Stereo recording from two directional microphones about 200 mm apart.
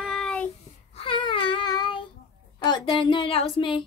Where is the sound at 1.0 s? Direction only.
25° left (ahead or behind).